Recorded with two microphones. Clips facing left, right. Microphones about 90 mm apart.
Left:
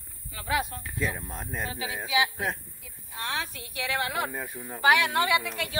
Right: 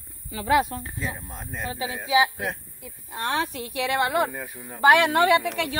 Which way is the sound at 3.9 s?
60° right (ahead or behind).